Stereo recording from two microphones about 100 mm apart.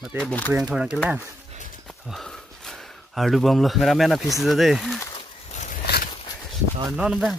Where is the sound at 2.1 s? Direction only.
Centre (ahead or behind).